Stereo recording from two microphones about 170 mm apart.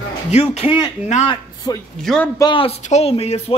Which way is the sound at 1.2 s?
25° left (ahead or behind).